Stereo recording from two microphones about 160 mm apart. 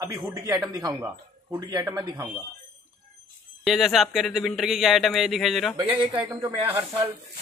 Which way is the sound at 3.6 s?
Centre (ahead or behind).